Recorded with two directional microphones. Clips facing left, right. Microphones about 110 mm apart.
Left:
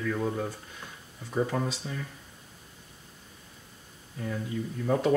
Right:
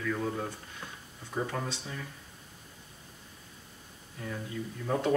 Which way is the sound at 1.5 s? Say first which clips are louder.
Left 5 dB; 15° left (ahead or behind).